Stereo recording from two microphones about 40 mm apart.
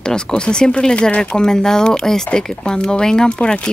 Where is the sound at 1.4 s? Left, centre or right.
Centre.